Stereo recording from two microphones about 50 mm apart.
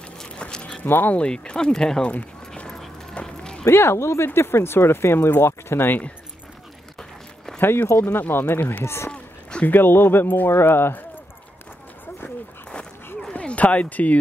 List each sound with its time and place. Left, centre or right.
0.4 s a sound: left
0.8 s speech: left
1.1 s speech: centre
2.1 s clip-clop: left
2.7 s a sound: centre
3.7 s speech: left
7.6 s speech: left
8.8 s speech: left
9.1 s a sound: left
9.7 s speech: left
13.3 s speech: left